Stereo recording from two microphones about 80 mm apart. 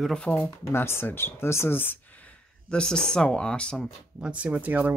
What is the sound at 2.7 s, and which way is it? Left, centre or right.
Speech, centre.